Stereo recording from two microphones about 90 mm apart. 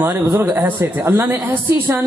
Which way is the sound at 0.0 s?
25° right (ahead or behind).